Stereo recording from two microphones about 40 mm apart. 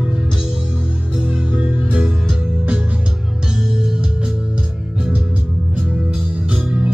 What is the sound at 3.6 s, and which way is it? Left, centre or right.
Music, centre.